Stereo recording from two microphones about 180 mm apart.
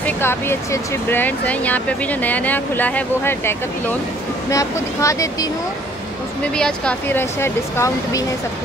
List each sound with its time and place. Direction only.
0.0 s speech: 15° left (ahead or behind)
6.5 s speech: 5° left (ahead or behind)